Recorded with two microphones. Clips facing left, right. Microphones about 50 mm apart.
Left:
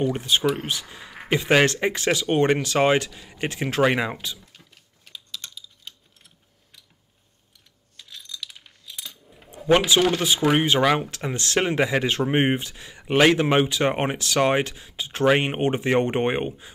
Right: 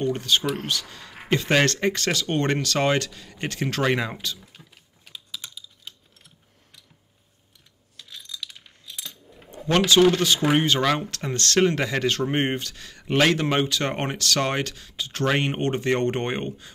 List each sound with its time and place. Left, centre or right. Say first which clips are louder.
0.0 s speech: left 1 dB; centre
4.5 s typing: right 2 dB; centre
8.0 s coin: even; centre
9.7 s speech: right 1 dB; centre